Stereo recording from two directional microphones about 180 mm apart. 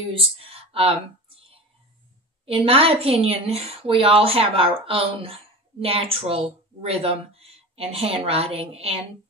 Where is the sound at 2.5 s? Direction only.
30° right (ahead or behind).